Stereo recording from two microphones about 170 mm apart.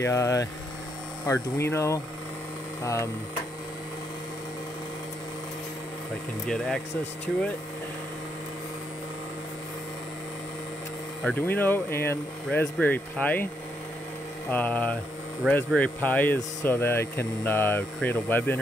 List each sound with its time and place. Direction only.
0.0 s speech: 15° left (ahead or behind)
6.4 s speech: 5° left (ahead or behind)
11.2 s speech: 10° left (ahead or behind)
14.5 s speech: 10° left (ahead or behind)